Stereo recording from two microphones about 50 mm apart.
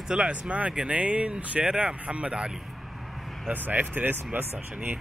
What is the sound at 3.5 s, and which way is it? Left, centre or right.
Speech, right.